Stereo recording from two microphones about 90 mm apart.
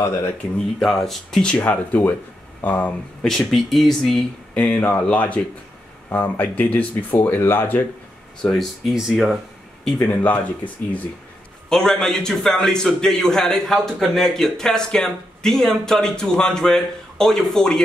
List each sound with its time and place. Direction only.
0.0 s speech: 30° left (ahead or behind)
0.7 s speech: 5° left (ahead or behind); by 2.9 s 20° left (ahead or behind)
3.2 s a man's voice: 5° left (ahead or behind)
4.6 s speech: 15° left (ahead or behind)
8.4 s a man's voice: 5° left (ahead or behind)
10.0 s speech: 15° left (ahead or behind)
11.7 s a man's voice: 5° left (ahead or behind)